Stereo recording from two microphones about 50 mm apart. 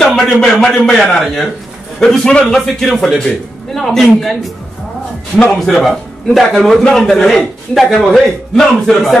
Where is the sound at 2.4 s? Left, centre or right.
Centre.